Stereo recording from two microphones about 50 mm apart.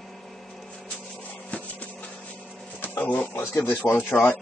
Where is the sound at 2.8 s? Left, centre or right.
Left.